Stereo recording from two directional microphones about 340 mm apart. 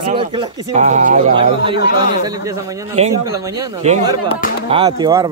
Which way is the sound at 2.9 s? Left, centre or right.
Centre.